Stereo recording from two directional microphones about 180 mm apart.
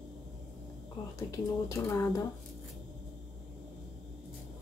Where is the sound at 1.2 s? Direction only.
15° left (ahead or behind).